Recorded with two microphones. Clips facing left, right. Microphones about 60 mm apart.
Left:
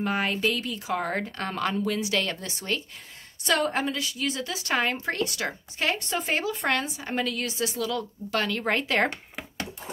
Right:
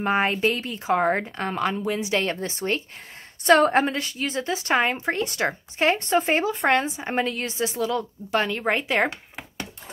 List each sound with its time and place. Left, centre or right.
0.0 s speech: right
1.1 s a woman's voice: centre